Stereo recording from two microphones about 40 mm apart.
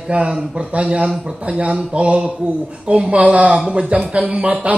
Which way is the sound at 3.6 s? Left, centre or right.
Right.